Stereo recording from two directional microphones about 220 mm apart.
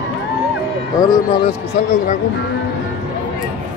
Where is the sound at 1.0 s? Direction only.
20° left (ahead or behind).